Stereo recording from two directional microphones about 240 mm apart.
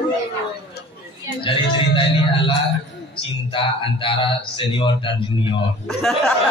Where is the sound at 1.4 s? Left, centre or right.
Left.